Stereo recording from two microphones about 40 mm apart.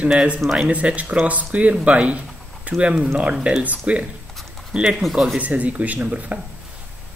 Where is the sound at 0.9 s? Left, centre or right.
Right.